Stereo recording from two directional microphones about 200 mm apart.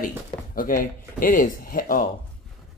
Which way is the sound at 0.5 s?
45° left (ahead or behind).